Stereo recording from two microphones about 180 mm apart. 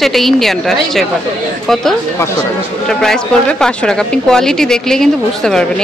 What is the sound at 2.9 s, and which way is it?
Speech, 5° left (ahead or behind).